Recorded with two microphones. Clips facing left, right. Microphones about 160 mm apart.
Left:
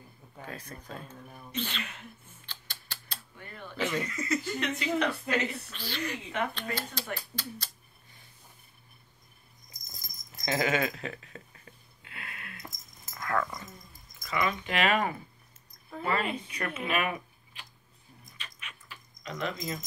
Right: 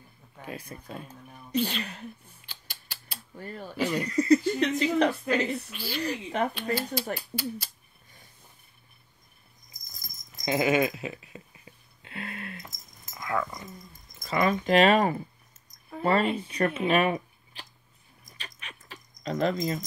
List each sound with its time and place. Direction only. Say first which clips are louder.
0.5 s speech: right 4 dB; 10° right (ahead or behind)
1.6 s speech: right 7 dB; 35° right (ahead or behind)
2.4 s a sound: left 3 dB; 10° right (ahead or behind)
3.3 s speech: right 8 dB; 35° right (ahead or behind)
3.7 s speech: right 3 dB; 10° right (ahead or behind)
4.0 s speech: right 10 dB; 35° right (ahead or behind)
5.7 s speech: right 4 dB; 10° right (ahead or behind)
6.0 s speech: right 5 dB; 35° right (ahead or behind)
6.5 s speech: right 7 dB; 10° right (ahead or behind)
10.4 s speech: right 4 dB; 15° right (ahead or behind)
12.0 s a sound: right 9 dB; 30° right (ahead or behind)
13.1 s dog: right 1 dB; 10° right (ahead or behind)
14.2 s speech: right 5 dB; 40° right (ahead or behind)
18.4 s keys jangling: right 3 dB; 35° right (ahead or behind)